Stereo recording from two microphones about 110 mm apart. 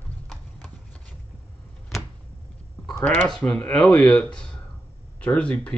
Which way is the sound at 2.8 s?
10° left (ahead or behind).